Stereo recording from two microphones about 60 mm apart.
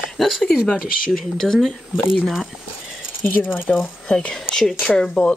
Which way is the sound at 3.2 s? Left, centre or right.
Left.